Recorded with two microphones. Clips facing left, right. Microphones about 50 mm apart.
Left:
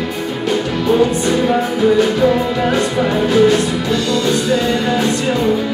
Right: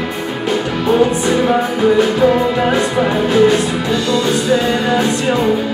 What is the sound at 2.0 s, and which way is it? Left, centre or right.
Music, centre.